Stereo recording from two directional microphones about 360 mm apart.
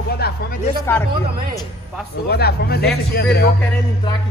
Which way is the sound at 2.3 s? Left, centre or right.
Left.